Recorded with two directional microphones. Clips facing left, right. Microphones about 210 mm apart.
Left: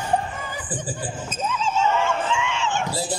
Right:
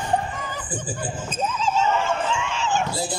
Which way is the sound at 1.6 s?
40° right (ahead or behind).